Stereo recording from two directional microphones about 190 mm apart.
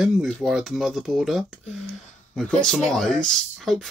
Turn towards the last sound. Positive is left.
turn(degrees=0)  # may be behind; listen again after turning